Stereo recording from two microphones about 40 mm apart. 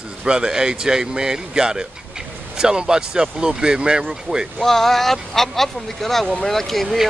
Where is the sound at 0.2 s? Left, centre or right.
Centre.